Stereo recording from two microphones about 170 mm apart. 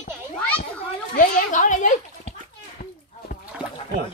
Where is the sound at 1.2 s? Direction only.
50° left (ahead or behind).